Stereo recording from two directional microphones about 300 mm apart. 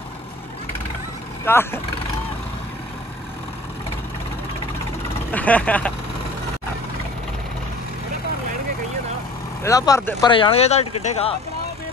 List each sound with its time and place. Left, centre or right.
1.4 s speech: centre
5.3 s speech: centre
9.6 s speech: centre